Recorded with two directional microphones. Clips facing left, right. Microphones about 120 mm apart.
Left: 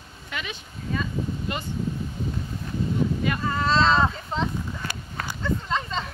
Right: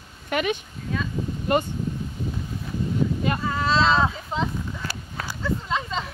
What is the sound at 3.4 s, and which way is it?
Speech, centre (ahead or behind).